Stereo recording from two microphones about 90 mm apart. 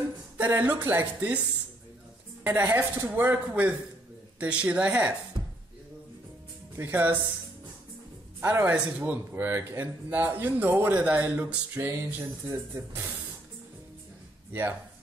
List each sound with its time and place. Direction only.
0.4 s a man's voice: 20° right (ahead or behind)
2.4 s a man's voice: 20° right (ahead or behind)
6.8 s a man's voice: 20° right (ahead or behind)
8.4 s a man's voice: 25° right (ahead or behind)